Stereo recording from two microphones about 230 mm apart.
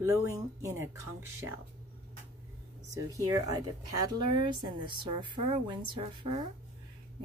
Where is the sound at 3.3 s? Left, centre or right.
Centre.